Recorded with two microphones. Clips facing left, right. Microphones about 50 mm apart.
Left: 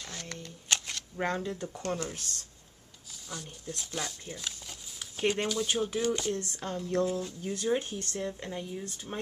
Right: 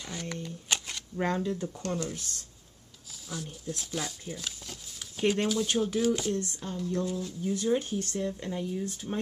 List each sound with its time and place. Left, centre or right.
0.0 s shuffling cards: centre
1.1 s a woman's voice: centre
1.8 s speech: left
3.3 s speech: centre
6.5 s speech: left
7.1 s a woman's voice: centre